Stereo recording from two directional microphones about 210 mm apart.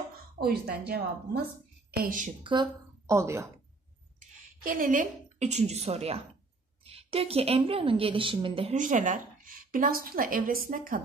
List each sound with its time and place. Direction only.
0.4 s a woman's voice: 50° right (ahead or behind)
2.4 s a woman's voice: 20° right (ahead or behind)
4.6 s a woman's voice: 40° right (ahead or behind); by 8.7 s 25° right (ahead or behind)
8.7 s a woman's voice: 40° right (ahead or behind)